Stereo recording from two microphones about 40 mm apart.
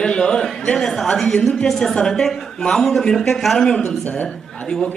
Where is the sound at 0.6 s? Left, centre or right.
Centre.